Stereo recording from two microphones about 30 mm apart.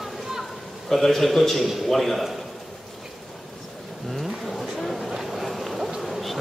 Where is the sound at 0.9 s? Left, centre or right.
Centre.